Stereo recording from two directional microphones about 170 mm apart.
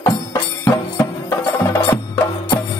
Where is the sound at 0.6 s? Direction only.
15° left (ahead or behind).